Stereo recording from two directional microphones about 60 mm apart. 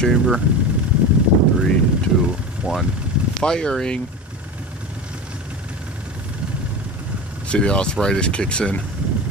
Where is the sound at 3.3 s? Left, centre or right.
Centre.